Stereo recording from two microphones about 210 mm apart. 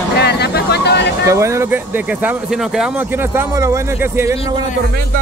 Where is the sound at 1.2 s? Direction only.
15° right (ahead or behind).